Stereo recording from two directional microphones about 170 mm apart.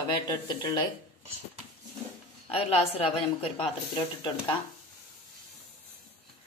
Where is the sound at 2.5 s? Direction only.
35° left (ahead or behind).